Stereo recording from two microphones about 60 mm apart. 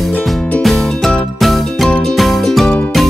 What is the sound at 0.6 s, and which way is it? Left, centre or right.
Music, centre.